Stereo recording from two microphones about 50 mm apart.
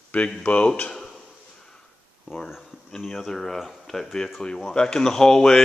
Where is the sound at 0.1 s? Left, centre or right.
Left.